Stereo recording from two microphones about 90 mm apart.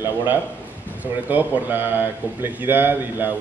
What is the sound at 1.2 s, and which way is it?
A man's voice, 20° right (ahead or behind).